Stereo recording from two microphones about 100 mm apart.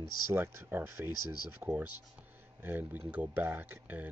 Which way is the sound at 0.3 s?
25° right (ahead or behind).